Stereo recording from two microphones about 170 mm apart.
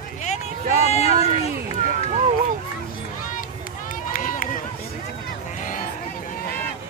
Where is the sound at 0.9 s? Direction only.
40° left (ahead or behind).